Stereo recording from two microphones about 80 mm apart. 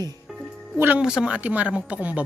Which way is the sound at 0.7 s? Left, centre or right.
Right.